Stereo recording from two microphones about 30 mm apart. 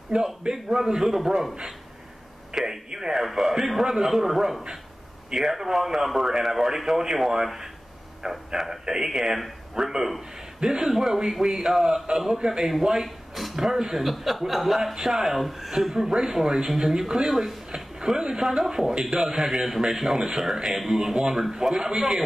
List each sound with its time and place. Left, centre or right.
0.1 s a man's voice: centre
2.5 s a man's voice: centre
8.2 s a man's voice: centre
14.0 s a man's voice: centre
15.9 s a man's voice: centre
17.6 s a sound: right
18.4 s a man's voice: centre